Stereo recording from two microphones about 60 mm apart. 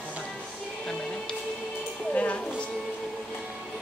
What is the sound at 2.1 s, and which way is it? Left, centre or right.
Speech, left.